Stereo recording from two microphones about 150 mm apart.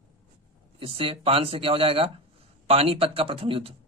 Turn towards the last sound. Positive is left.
turn(degrees=-40)  # may be behind; listen again after turning